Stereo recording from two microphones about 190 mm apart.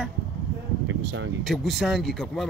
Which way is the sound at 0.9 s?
80° right.